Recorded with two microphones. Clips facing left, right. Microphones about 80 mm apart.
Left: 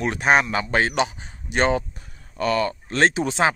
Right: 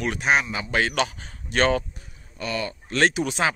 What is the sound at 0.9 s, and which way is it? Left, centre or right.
Speech, left.